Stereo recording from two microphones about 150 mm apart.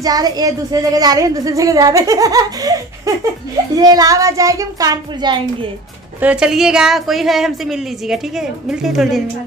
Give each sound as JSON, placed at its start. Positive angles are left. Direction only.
{"t": 0.0, "sound": "speech", "side_deg": -25}
{"t": 6.2, "sound": "a woman's voice", "side_deg": -5}